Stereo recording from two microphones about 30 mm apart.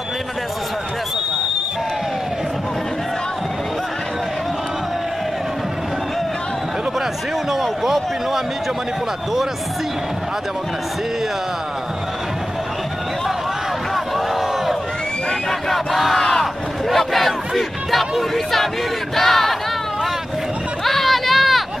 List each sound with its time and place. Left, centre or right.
7.5 s a sound: centre
13.9 s crowd: centre
15.7 s battle cry: centre
16.2 s crowd: centre
16.9 s crowd: centre
19.1 s battle cry: centre
20.8 s a sound: centre